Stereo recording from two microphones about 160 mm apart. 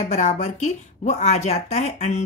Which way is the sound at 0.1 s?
45° left (ahead or behind).